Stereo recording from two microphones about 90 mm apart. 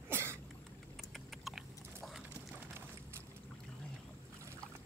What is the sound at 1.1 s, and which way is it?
Biting, centre (ahead or behind).